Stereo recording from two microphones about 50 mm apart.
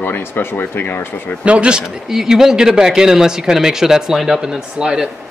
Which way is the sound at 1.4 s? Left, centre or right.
Right.